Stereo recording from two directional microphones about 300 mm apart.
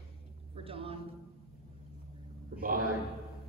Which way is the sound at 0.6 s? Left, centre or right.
Centre.